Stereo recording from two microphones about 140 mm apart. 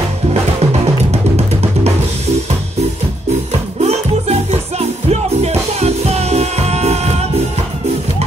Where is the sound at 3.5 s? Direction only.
50° right (ahead or behind).